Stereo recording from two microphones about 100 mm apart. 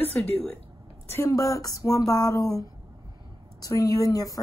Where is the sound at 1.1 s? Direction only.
30° left (ahead or behind).